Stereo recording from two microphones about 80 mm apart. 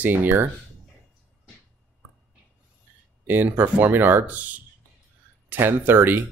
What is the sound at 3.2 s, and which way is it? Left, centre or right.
Speech, right.